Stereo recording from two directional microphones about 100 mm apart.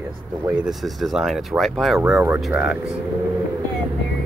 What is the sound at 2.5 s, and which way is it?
Speech, 10° right (ahead or behind).